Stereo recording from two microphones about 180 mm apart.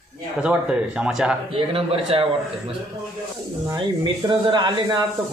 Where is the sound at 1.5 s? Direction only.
30° right (ahead or behind).